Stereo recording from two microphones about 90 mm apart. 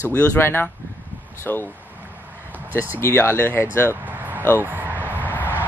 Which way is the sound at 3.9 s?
20° right (ahead or behind).